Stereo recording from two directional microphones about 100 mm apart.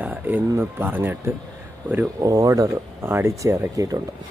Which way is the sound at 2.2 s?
35° right (ahead or behind).